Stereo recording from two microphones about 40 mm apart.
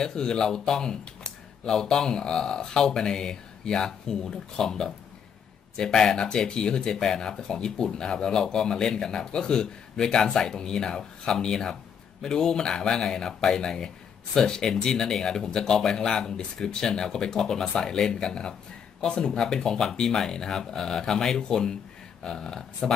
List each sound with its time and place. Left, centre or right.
0.0 s speech: centre